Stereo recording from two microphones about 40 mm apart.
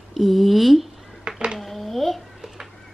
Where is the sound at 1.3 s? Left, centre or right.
Right.